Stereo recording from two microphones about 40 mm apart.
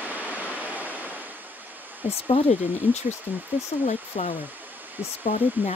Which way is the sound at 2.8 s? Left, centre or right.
Right.